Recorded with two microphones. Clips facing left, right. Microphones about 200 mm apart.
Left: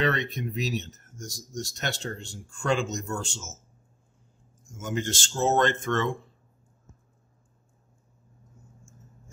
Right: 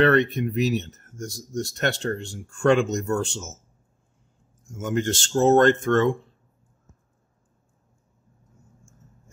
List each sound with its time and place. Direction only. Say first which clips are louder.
0.0 s speech: right 8 dB; 60° right (ahead or behind)
4.7 s speech: right 6 dB; 60° right (ahead or behind)